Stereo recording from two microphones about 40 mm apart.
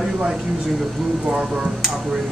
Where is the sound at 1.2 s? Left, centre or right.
Right.